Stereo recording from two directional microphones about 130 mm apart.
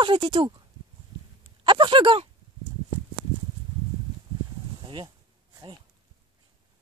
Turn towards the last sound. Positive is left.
turn(degrees=-35)  # may be behind; listen again after turning